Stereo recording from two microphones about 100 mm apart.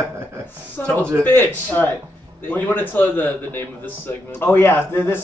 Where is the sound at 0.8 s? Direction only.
15° left (ahead or behind).